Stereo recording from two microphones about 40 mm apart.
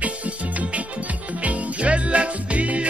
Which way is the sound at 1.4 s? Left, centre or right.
Right.